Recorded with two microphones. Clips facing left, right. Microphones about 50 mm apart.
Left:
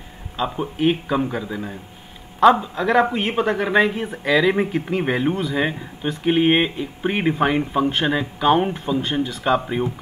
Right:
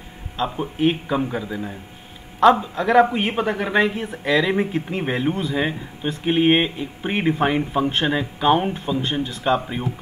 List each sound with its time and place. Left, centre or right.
0.4 s speech: centre